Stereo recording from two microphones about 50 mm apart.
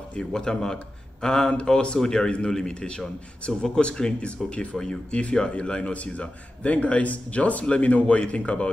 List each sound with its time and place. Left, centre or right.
0.2 s a man's voice: centre